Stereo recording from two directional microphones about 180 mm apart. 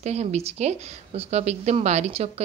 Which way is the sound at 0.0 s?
35° right (ahead or behind).